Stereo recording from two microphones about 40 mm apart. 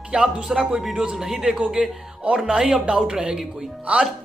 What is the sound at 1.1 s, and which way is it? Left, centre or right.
A man's voice, centre.